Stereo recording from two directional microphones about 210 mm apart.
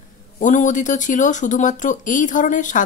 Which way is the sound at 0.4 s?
35° left (ahead or behind).